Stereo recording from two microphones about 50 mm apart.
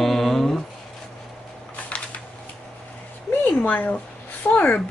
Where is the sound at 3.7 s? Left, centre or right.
Left.